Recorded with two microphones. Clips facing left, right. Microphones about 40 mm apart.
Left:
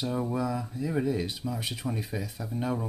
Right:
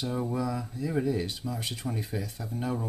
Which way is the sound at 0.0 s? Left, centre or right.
Centre.